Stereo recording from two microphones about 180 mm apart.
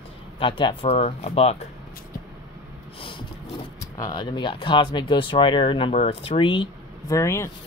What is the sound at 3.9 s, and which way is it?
Speech, 25° left (ahead or behind).